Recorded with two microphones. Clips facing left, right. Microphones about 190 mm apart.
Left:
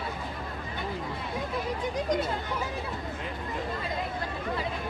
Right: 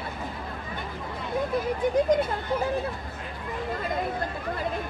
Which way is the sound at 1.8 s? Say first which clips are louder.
Right 8 dB; 55° right (ahead or behind).